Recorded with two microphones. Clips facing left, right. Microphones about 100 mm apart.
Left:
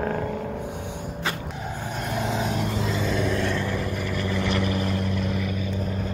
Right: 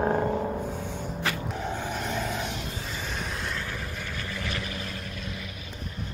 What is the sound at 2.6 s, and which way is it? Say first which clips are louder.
Vehicle: left 10 dB; 90° left.